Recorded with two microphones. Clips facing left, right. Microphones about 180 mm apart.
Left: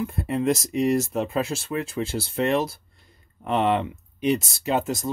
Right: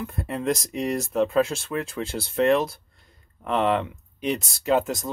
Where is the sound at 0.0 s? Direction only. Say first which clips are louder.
Left 4 dB; 5° left (ahead or behind).